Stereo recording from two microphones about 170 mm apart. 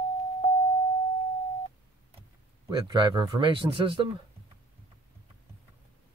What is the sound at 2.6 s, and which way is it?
Speech, 25° right (ahead or behind).